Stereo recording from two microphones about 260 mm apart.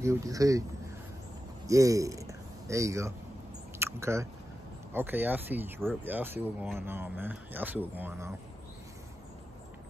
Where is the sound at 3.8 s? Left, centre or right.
Centre.